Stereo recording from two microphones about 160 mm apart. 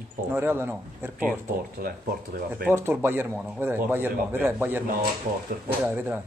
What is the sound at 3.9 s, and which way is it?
Speech, 15° right (ahead or behind).